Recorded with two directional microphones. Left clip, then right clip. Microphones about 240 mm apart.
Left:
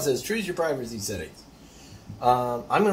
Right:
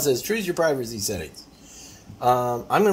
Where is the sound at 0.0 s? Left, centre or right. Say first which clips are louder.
Right 3 dB; right.